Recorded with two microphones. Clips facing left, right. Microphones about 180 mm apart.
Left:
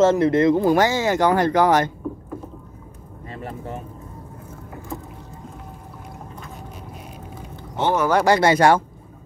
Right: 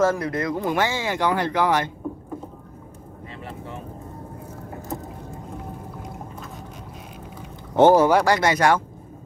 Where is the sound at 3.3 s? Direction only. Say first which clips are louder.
Left 5 dB; 45° left (ahead or behind).